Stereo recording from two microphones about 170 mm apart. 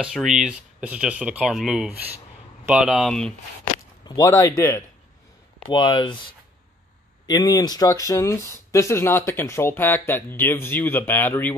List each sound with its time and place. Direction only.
0.0 s speech: centre (ahead or behind)
4.1 s speech: 15° left (ahead or behind)
5.7 s speech: 25° left (ahead or behind)
7.2 s speech: 20° left (ahead or behind)